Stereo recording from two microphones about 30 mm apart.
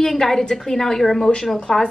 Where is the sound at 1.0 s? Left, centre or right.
Centre.